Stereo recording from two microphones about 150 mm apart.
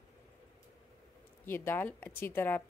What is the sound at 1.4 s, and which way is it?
Speech, 15° left (ahead or behind).